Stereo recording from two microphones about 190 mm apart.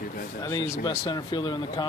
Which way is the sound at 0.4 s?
20° left (ahead or behind).